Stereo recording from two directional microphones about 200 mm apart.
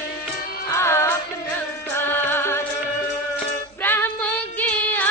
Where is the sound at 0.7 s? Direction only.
15° left (ahead or behind).